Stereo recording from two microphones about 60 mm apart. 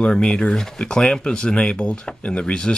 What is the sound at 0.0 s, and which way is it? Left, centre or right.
Speech, centre.